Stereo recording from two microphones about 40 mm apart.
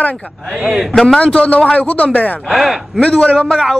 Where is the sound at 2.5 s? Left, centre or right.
Centre.